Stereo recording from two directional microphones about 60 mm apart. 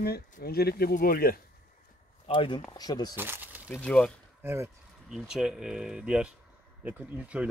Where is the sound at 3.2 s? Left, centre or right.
Right.